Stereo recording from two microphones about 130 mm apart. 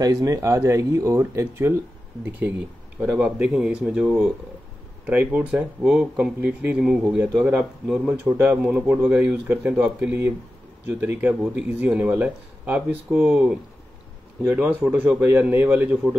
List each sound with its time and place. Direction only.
0.0 s speech: 25° right (ahead or behind); by 16.2 s 10° right (ahead or behind)